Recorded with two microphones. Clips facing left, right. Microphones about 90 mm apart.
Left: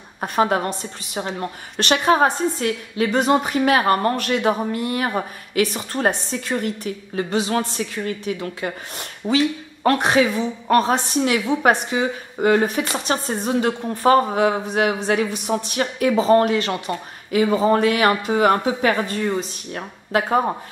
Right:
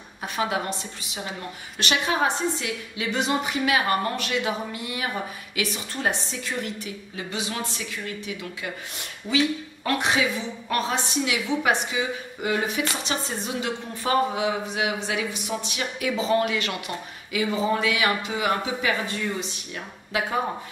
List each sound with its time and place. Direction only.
0.2 s a woman's voice: 45° left (ahead or behind)